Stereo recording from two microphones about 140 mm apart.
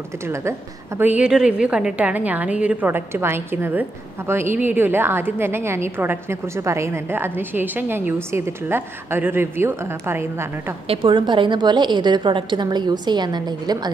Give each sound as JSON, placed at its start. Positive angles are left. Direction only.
{"t": 0.3, "sound": "a woman's voice", "side_deg": -20}
{"t": 10.9, "sound": "a woman's voice", "side_deg": -40}